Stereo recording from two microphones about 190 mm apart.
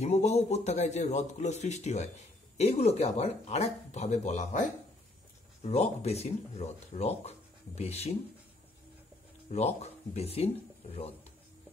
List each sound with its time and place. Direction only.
0.0 s speech: 35° left (ahead or behind)
5.7 s speech: 35° left (ahead or behind)
9.5 s speech: 35° left (ahead or behind)